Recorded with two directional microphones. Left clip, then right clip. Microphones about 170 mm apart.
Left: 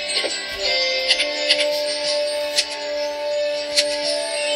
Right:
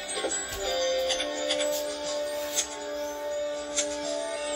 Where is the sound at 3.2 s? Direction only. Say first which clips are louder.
Left 9 dB; 30° left (ahead or behind).